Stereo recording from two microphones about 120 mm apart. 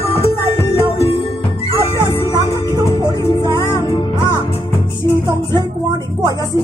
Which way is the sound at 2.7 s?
35° right (ahead or behind).